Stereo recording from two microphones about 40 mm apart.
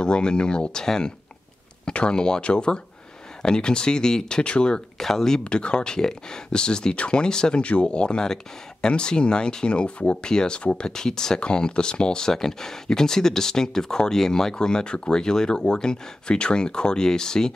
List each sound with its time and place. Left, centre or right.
0.0 s speech: left
4.9 s speech: centre
5.4 s speech: left
7.6 s speech: left